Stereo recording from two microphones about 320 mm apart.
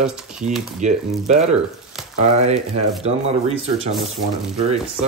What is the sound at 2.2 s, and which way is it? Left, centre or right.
Speech, right.